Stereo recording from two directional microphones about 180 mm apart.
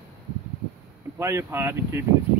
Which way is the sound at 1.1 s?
15° right (ahead or behind).